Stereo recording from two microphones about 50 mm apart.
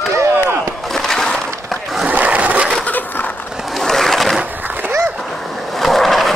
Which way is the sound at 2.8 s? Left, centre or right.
Left.